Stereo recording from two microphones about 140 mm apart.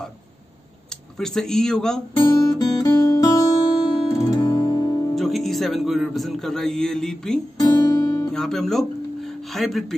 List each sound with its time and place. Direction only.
1.1 s speech: 5° left (ahead or behind)
2.2 s music: 20° left (ahead or behind)
5.1 s speech: centre (ahead or behind)
7.5 s guitar: 25° left (ahead or behind)
8.3 s speech: 5° left (ahead or behind)